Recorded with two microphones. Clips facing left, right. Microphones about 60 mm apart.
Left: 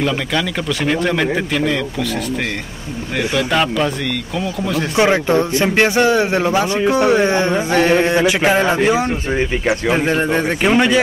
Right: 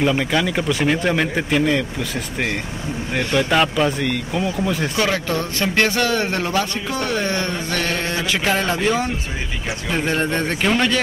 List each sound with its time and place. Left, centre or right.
0.0 s speech: centre
3.3 s speech: centre
4.9 s a man's voice: left